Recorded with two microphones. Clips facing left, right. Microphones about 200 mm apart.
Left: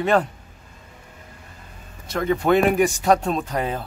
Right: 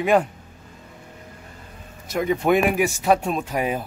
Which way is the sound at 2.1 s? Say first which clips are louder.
Even; 15° right (ahead or behind).